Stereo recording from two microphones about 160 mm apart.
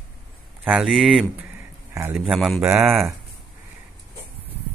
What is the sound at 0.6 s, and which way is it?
Speech, 5° right (ahead or behind).